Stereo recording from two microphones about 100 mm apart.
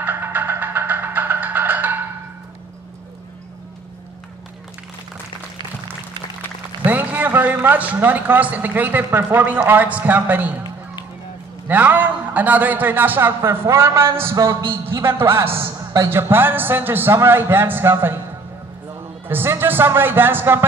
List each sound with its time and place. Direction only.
0.0 s music: 20° right (ahead or behind)
6.8 s a man's voice: 15° right (ahead or behind)
11.6 s a man's voice: 15° right (ahead or behind)
18.9 s music: 20° right (ahead or behind)